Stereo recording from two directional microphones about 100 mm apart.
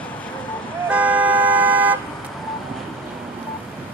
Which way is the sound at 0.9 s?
15° right (ahead or behind).